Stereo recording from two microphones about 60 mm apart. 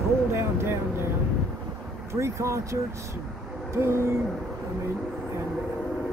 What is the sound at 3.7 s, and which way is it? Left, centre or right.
Speech, right.